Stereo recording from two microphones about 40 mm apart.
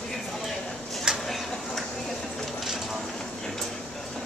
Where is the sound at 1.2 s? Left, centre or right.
Centre.